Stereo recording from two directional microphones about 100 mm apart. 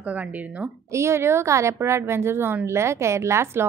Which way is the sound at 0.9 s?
25° right (ahead or behind).